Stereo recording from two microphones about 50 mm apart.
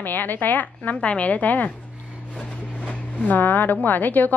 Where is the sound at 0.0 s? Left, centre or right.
Left.